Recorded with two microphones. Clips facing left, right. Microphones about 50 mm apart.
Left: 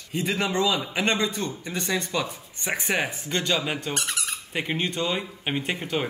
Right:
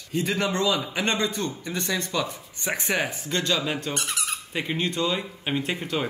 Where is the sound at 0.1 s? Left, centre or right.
Left.